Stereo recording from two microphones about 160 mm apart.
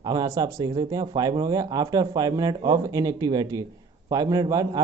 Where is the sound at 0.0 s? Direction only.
25° right (ahead or behind).